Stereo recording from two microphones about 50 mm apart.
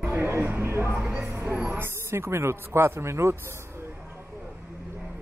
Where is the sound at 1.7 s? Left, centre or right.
Right.